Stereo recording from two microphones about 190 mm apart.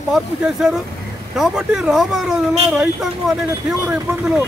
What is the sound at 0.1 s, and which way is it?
Speech, centre (ahead or behind).